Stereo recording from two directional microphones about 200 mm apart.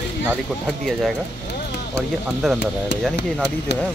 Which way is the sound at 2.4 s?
Centre (ahead or behind).